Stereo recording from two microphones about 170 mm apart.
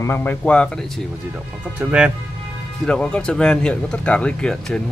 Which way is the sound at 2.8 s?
5° left (ahead or behind).